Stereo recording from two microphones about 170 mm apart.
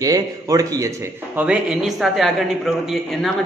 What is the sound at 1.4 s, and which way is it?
A man's voice, 5° right (ahead or behind).